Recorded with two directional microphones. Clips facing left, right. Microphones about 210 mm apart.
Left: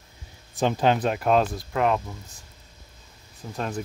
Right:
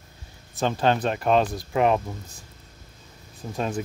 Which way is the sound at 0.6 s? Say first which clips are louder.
Left 1 dB; 10° left (ahead or behind).